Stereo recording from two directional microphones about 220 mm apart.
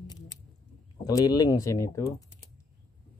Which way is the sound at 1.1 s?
15° left (ahead or behind).